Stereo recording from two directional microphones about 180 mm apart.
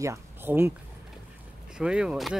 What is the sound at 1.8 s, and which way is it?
Speech, 5° right (ahead or behind).